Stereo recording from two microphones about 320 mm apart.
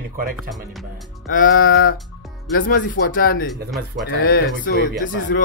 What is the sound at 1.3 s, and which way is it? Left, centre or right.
Speech, left.